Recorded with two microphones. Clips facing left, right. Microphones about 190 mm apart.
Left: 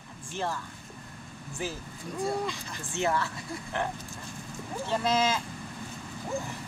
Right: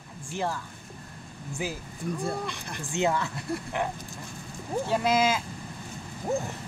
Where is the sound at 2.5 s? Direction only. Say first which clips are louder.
Right 2 dB; 65° right (ahead or behind).